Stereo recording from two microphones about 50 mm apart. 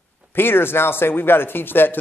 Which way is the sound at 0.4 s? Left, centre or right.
Left.